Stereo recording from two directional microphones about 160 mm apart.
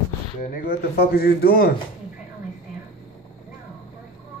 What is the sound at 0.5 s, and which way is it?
A man's voice, 70° left (ahead or behind).